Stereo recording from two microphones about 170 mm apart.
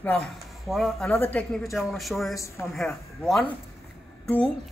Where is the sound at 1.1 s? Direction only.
15° left (ahead or behind).